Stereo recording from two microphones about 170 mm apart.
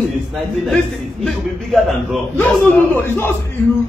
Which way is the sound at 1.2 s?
Centre (ahead or behind).